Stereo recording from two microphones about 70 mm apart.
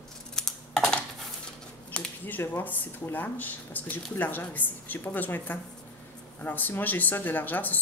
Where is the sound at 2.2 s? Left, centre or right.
Left.